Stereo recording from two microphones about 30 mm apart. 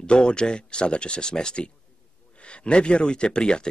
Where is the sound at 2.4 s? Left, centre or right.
Left.